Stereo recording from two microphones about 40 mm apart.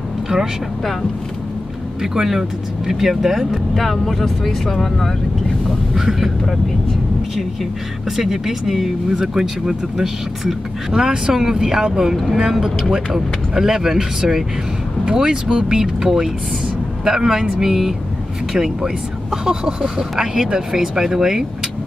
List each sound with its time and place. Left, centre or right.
2.0 s speech: centre
5.9 s speech: centre
8.2 s speech: centre